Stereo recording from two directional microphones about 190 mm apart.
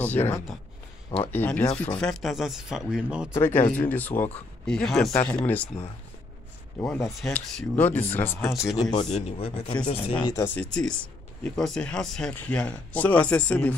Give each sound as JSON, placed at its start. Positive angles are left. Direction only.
{"t": 0.0, "sound": "speech", "side_deg": 10}
{"t": 2.0, "sound": "speech", "side_deg": 0}
{"t": 3.3, "sound": "speech", "side_deg": 10}
{"t": 6.8, "sound": "speech", "side_deg": 10}
{"t": 9.1, "sound": "speech", "side_deg": 30}
{"t": 10.2, "sound": "speech", "side_deg": 15}